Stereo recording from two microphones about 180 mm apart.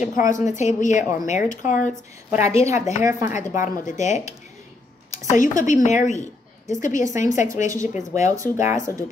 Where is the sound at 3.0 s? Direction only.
15° right (ahead or behind).